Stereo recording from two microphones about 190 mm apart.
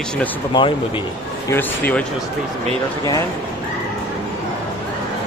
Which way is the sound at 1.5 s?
10° left (ahead or behind).